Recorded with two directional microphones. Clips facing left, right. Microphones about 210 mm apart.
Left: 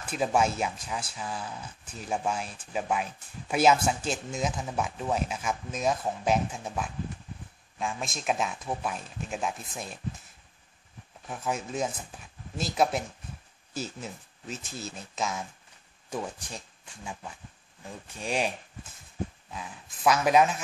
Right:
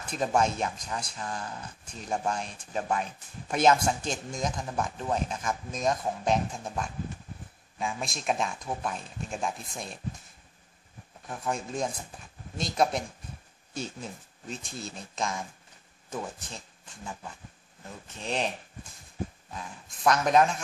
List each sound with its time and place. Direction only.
0.0 s speech: 5° left (ahead or behind)
11.2 s speech: 5° left (ahead or behind)
19.5 s speech: 5° left (ahead or behind)